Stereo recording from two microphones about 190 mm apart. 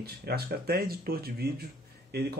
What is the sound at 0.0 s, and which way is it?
Speech, 55° right (ahead or behind).